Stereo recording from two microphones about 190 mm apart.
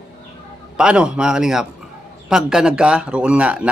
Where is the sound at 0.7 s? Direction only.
5° right (ahead or behind).